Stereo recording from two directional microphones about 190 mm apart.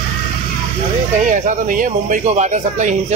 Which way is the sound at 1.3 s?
45° right (ahead or behind).